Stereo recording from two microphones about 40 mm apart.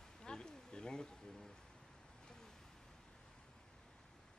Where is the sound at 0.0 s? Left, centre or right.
Centre.